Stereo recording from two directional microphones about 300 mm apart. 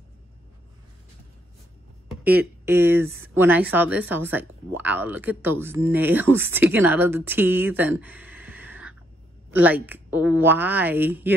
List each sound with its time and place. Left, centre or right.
2.2 s speech: centre